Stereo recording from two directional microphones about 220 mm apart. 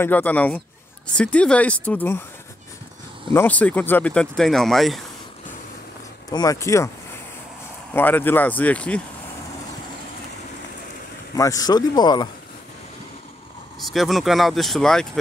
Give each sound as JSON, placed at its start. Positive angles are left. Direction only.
{"t": 0.0, "sound": "speech", "side_deg": 5}
{"t": 3.3, "sound": "speech", "side_deg": 5}
{"t": 6.3, "sound": "speech", "side_deg": 15}
{"t": 7.9, "sound": "speech", "side_deg": 10}
{"t": 11.3, "sound": "speech", "side_deg": 15}
{"t": 13.7, "sound": "speech", "side_deg": 0}